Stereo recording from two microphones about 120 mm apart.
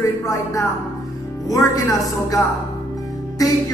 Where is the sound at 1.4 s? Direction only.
30° left (ahead or behind).